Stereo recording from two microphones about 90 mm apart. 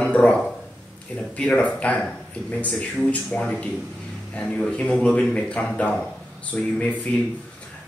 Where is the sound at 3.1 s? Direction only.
10° left (ahead or behind).